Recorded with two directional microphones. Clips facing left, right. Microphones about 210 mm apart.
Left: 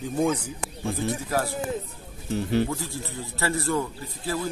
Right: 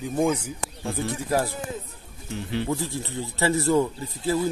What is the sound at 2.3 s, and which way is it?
Speech, 45° left (ahead or behind).